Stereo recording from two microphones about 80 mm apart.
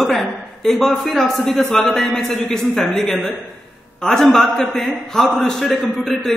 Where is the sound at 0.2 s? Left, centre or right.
Centre.